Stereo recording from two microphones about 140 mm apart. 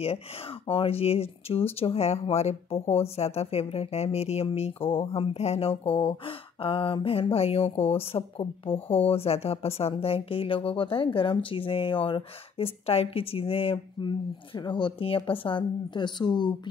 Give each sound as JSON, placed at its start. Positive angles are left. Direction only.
{"t": 0.7, "sound": "speech", "side_deg": 40}